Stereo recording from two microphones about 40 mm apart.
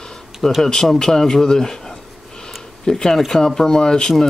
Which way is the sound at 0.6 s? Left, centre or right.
Centre.